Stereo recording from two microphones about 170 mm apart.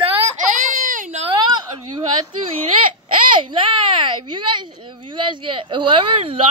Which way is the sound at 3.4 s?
30° right (ahead or behind).